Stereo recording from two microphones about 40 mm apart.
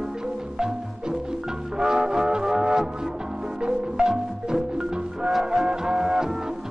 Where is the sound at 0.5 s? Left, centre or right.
Centre.